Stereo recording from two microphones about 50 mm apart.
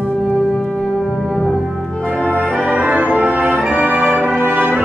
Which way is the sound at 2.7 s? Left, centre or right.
Right.